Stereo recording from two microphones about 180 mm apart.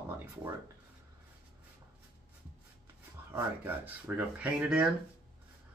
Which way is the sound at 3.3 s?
10° right (ahead or behind).